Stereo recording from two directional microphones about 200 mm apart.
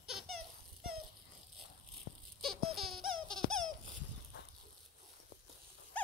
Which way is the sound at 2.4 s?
Centre (ahead or behind).